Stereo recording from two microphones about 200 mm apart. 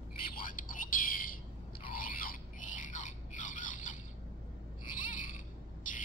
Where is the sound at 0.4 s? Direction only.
45° left (ahead or behind).